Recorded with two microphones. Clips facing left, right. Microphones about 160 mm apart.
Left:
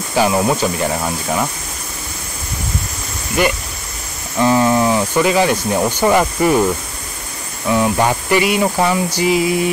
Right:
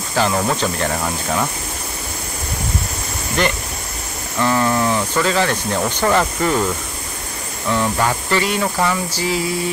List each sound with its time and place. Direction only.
0.1 s speech: 10° left (ahead or behind)
3.4 s speech: 10° left (ahead or behind)
7.7 s speech: 15° left (ahead or behind)